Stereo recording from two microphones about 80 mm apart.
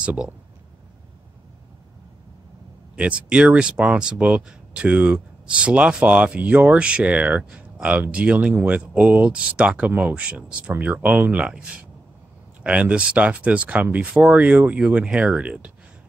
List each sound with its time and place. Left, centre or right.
0.0 s speech: centre
3.0 s speech: centre